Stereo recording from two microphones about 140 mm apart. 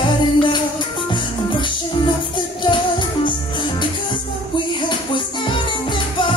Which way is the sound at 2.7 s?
35° left (ahead or behind).